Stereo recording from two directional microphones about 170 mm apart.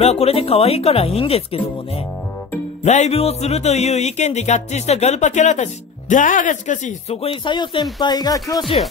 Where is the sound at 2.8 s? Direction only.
40° left (ahead or behind); by 8.8 s 20° left (ahead or behind).